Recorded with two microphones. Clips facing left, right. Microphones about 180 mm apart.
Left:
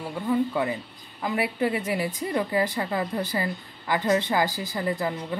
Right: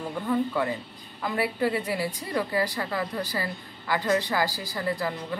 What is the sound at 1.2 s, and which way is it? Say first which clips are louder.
A woman's voice: left 1 dB; 15° left (ahead or behind).